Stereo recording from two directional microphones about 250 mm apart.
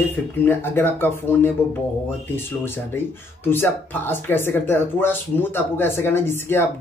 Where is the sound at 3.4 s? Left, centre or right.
Centre.